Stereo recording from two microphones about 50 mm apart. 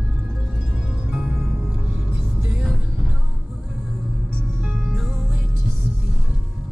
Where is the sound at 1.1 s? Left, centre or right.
Centre.